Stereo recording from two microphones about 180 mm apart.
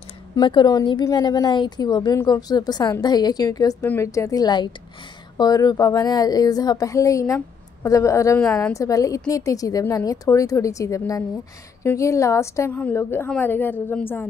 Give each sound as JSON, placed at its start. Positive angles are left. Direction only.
{"t": 0.4, "sound": "a woman's voice", "side_deg": 25}